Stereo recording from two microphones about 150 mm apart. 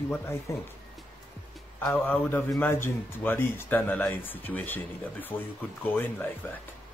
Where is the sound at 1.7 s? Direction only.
10° left (ahead or behind).